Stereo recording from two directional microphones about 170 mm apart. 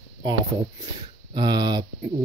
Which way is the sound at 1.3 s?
25° right (ahead or behind).